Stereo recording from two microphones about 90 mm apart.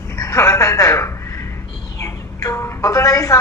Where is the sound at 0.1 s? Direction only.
30° left (ahead or behind).